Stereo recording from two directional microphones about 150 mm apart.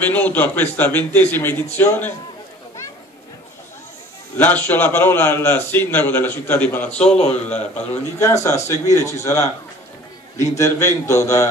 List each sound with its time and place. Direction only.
0.1 s a man's voice: 10° left (ahead or behind)
4.4 s a man's voice: 10° left (ahead or behind)